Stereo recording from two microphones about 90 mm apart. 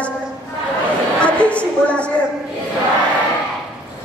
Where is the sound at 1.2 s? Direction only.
15° left (ahead or behind).